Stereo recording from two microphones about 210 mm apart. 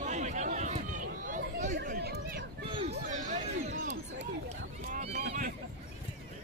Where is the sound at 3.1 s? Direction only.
35° right (ahead or behind).